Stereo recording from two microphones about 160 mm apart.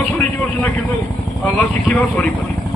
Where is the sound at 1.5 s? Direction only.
Centre (ahead or behind).